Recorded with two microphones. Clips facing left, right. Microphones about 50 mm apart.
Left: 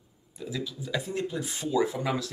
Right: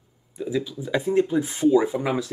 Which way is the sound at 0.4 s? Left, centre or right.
Right.